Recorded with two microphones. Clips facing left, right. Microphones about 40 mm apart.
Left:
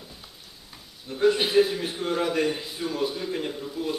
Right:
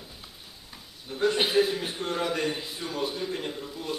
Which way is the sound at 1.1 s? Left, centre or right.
Centre.